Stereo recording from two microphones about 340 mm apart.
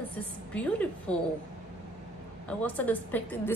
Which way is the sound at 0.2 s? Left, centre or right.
Centre.